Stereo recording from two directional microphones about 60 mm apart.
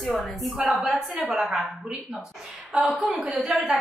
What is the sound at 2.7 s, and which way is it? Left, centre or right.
Speech, centre.